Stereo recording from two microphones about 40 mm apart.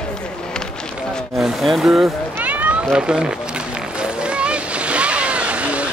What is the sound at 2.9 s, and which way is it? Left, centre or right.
Speech, right.